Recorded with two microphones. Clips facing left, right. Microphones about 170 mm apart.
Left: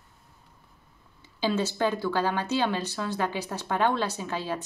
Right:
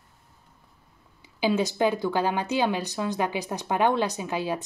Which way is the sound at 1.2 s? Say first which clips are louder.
Right 3 dB; 10° right (ahead or behind).